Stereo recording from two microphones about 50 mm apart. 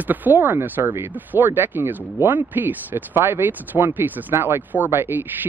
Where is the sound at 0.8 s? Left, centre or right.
Right.